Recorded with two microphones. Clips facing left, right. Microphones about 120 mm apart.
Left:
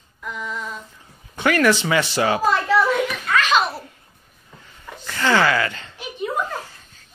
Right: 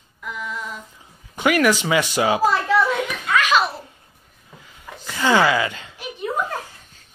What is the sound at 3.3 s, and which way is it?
Giggle, 5° right (ahead or behind).